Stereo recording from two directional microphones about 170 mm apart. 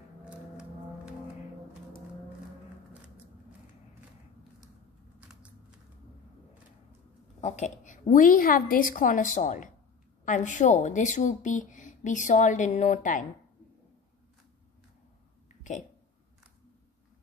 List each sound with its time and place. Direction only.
0.2 s music: 5° right (ahead or behind)
5.2 s typing: 10° right (ahead or behind)
7.3 s a woman's voice: 40° left (ahead or behind)